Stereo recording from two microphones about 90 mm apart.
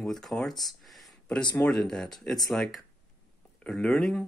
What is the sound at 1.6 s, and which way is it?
Speech, 15° left (ahead or behind).